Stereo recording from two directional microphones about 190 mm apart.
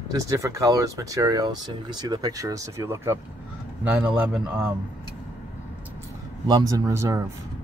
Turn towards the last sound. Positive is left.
turn(degrees=-15)  # may be behind; listen again after turning